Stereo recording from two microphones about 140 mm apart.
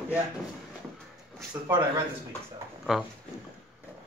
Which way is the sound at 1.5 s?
20° right (ahead or behind).